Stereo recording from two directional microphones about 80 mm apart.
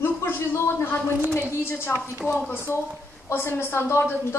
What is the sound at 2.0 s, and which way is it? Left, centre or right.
Speech, right.